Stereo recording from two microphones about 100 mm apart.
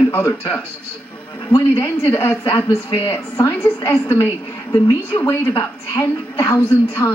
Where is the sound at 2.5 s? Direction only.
45° left (ahead or behind).